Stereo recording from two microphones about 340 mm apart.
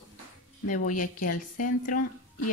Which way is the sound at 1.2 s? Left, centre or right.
Left.